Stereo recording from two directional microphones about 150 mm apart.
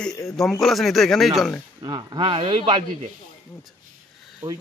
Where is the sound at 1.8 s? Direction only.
30° right (ahead or behind).